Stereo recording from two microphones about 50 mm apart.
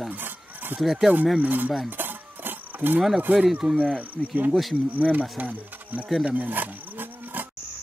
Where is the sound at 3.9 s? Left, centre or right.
Right.